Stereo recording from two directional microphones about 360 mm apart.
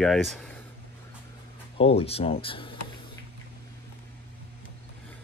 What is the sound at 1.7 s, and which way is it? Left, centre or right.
Speech, centre.